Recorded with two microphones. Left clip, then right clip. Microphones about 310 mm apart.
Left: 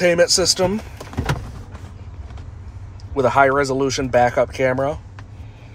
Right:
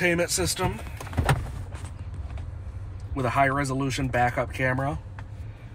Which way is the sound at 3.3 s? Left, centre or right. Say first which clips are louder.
Left 8 dB; centre.